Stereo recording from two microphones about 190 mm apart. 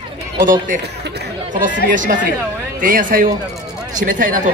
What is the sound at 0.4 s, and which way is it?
Speech, 45° right (ahead or behind).